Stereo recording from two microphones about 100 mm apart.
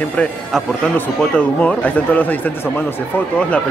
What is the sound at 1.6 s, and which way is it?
Speech, 15° left (ahead or behind).